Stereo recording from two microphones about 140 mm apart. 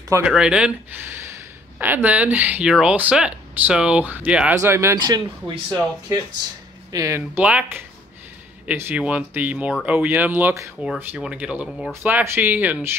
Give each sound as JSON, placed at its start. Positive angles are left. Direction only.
{"t": 0.2, "sound": "speech", "side_deg": -5}
{"t": 5.0, "sound": "speech", "side_deg": -30}
{"t": 11.1, "sound": "speech", "side_deg": -5}